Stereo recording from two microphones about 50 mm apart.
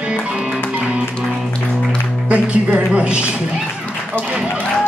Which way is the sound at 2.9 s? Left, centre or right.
Right.